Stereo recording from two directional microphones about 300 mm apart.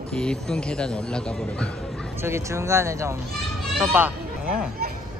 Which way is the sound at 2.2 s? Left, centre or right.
Centre.